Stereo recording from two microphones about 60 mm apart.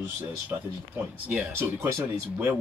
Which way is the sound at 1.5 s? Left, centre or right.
Right.